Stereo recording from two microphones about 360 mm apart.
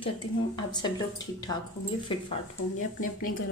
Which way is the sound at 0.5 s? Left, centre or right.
Centre.